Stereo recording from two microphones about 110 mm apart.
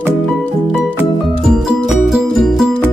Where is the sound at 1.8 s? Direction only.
5° right (ahead or behind).